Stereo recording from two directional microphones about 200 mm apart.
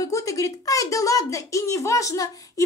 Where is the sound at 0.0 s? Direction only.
15° left (ahead or behind).